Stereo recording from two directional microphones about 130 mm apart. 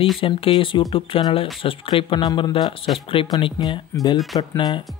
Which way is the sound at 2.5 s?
45° left (ahead or behind).